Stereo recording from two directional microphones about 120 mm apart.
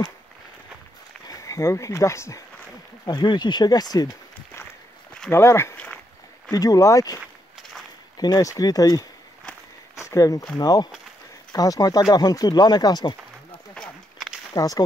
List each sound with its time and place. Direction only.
1.2 s speech: 30° left (ahead or behind)
3.1 s speech: 40° left (ahead or behind)
5.3 s speech: 20° left (ahead or behind)
8.2 s speech: 30° left (ahead or behind)
9.9 s a sound: 30° left (ahead or behind)
10.6 s speech: 35° left (ahead or behind)
13.7 s walk: 5° left (ahead or behind)
14.5 s speech: 30° left (ahead or behind)